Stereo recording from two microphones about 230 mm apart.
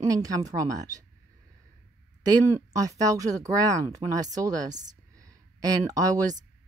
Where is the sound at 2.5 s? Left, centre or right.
Centre.